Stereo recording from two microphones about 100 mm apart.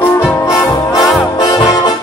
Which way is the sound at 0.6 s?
35° left (ahead or behind).